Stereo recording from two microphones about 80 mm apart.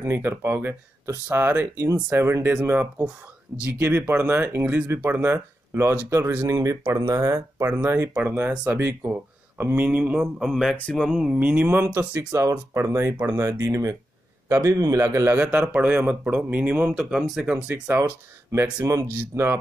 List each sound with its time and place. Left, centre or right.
0.0 s speech: right
6.0 s speech: right
6.4 s a man's voice: right; by 10.2 s centre
10.2 s speech: centre
11.1 s speech: centre
11.3 s speech: centre
12.3 s a man's voice: right
15.0 s speech: right
15.4 s speech: centre
17.8 s speech: right